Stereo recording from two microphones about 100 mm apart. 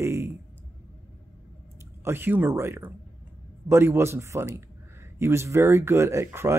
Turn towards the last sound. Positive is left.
turn(degrees=-30)  # may be behind; listen again after turning